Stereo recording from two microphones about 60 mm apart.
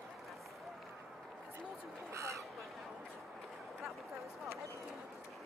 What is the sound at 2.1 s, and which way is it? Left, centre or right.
Crow, right.